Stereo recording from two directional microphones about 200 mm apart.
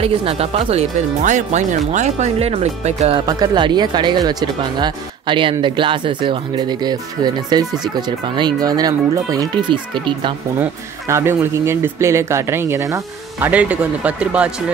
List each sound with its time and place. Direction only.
0.0 s speech: 30° right (ahead or behind)
3.3 s speech: 20° right (ahead or behind)
10.6 s speech: 15° right (ahead or behind)